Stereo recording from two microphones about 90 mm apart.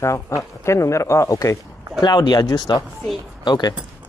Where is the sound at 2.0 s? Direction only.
50° left (ahead or behind).